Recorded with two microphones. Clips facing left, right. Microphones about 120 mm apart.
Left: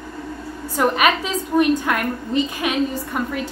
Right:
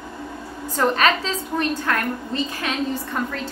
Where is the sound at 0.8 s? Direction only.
15° left (ahead or behind).